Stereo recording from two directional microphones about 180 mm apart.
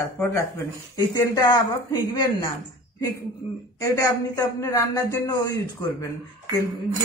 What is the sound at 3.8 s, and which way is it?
Speech, 20° left (ahead or behind).